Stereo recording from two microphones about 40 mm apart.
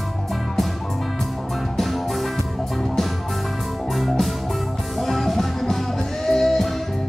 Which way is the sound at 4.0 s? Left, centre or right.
Centre.